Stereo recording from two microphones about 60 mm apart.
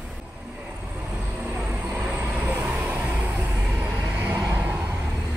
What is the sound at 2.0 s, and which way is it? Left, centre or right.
Vehicle, right.